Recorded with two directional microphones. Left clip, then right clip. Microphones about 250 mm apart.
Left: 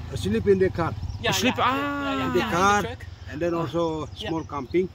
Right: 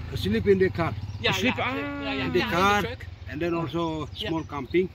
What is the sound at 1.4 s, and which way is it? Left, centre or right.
Speech, centre.